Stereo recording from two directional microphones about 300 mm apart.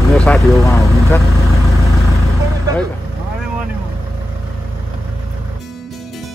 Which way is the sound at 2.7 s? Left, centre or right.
Centre.